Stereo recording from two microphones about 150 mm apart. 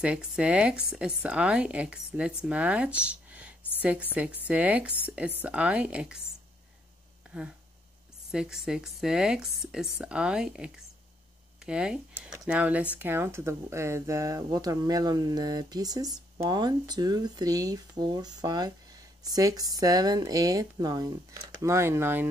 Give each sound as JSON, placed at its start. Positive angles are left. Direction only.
{"t": 0.0, "sound": "speech", "side_deg": -5}
{"t": 7.2, "sound": "speech", "side_deg": -5}